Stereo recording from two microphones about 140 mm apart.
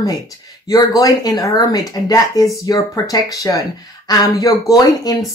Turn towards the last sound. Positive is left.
turn(degrees=25)  # may be behind; listen again after turning